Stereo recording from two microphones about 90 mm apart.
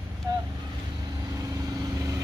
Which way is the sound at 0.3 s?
50° right (ahead or behind).